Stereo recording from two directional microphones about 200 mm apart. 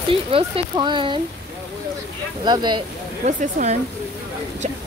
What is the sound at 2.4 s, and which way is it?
Speech, 20° right (ahead or behind).